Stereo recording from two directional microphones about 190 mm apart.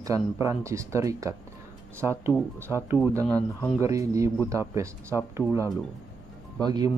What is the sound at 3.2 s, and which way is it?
Speech, 10° left (ahead or behind).